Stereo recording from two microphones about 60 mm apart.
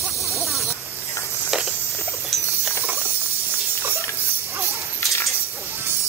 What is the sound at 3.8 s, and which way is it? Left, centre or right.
Clip-clop, right.